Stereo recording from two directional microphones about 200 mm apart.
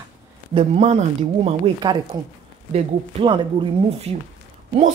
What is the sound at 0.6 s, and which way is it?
Speech, 35° right (ahead or behind).